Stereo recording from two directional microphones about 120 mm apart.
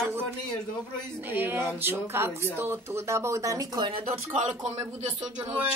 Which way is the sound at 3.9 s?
50° right (ahead or behind).